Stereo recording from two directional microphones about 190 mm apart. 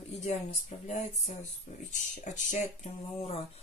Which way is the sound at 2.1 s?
40° left (ahead or behind).